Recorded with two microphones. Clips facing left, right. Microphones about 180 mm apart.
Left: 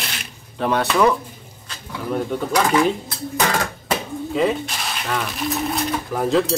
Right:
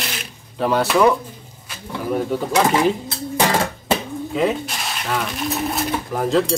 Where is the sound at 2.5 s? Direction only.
25° right (ahead or behind).